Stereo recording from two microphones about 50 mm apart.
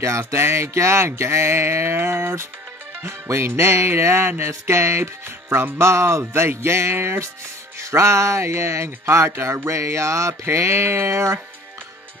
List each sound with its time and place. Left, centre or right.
0.0 s music: right
4.5 s music: right
5.8 s music: right
7.8 s speech: right